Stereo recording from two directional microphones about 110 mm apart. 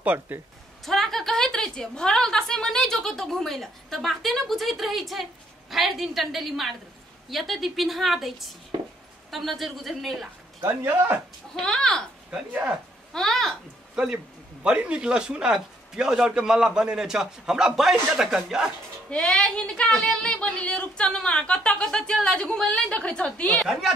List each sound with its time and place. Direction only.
0.0 s speech: 15° right (ahead or behind)
0.8 s a woman's voice: 5° left (ahead or behind)
10.6 s a man's voice: 20° right (ahead or behind)
11.5 s speech: 5° left (ahead or behind)
12.3 s speech: 10° right (ahead or behind)
13.1 s a woman's voice: 5° left (ahead or behind)
13.9 s speech: 10° right (ahead or behind)
19.0 s speech: 10° left (ahead or behind)